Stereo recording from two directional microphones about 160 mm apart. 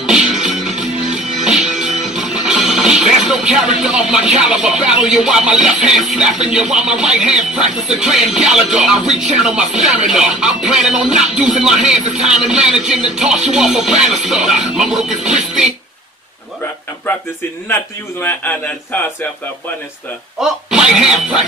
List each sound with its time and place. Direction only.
0.0 s music: 5° right (ahead or behind)
6.4 s speech: 5° right (ahead or behind)
18.2 s speech: 10° left (ahead or behind)
20.3 s speech: 5° right (ahead or behind)